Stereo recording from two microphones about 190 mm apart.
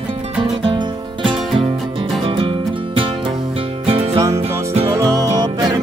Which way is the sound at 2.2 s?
30° right (ahead or behind).